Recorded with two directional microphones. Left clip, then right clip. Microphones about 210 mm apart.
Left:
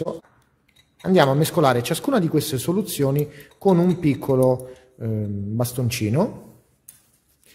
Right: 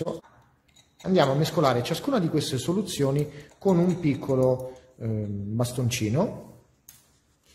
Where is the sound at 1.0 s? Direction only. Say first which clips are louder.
Left 5 dB; 30° left (ahead or behind).